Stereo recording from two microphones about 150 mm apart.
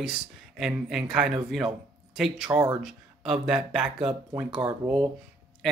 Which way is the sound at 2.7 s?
5° right (ahead or behind).